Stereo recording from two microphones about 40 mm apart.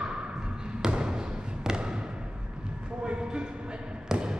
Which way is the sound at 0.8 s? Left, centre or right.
Centre.